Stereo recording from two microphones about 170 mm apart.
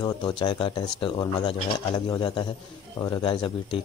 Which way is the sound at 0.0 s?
25° left (ahead or behind).